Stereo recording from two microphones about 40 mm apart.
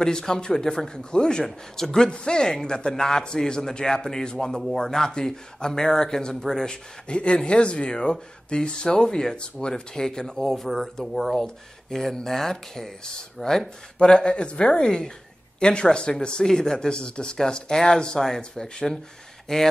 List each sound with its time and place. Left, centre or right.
0.0 s a man's voice: centre
2.0 s a man's voice: left
10.5 s a man's voice: centre
17.0 s a man's voice: left